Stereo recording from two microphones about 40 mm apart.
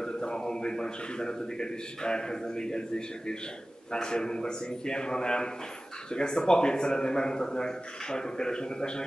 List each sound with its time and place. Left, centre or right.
0.0 s speech: centre
3.9 s speech: centre